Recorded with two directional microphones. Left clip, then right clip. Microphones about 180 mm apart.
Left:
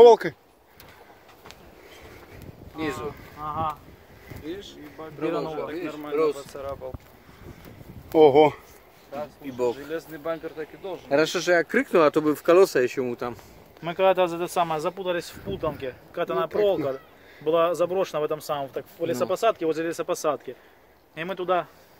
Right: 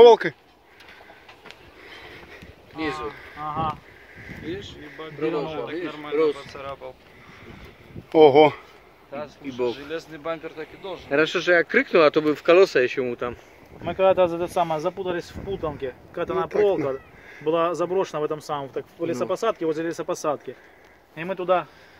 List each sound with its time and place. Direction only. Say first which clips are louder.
0.0 s speech: right 1 dB; 20° left (ahead or behind)
3.3 s speech: right 2 dB; 15° right (ahead or behind)
4.5 s speech: right 2 dB; 60° left (ahead or behind)
5.0 s speech: right 2 dB; 35° left (ahead or behind)
6.1 s speech: right 2 dB; 55° left (ahead or behind)
6.6 s speech: left 1 dB; 30° left (ahead or behind)
8.1 s speech: right 2 dB; 5° left (ahead or behind)
9.6 s speech: even; 30° left (ahead or behind)
11.1 s speech: right 1 dB; 65° left (ahead or behind)
13.8 s speech: right 2 dB; 35° right (ahead or behind); by 20.3 s 55° right (ahead or behind)
21.2 s speech: right 3 dB; 40° right (ahead or behind)